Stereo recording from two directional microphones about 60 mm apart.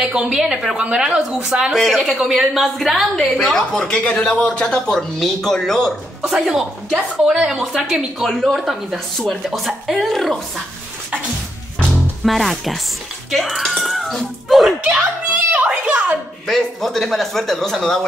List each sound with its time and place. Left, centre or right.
0.0 s a woman's voice: centre
1.7 s a woman's voice: centre
6.2 s a woman's voice: centre
8.3 s a woman's voice: centre
12.3 s a woman's voice: centre
15.3 s a sound: right
16.4 s a woman's voice: centre